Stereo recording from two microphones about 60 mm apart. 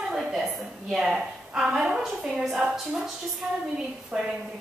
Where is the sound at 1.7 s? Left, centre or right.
Centre.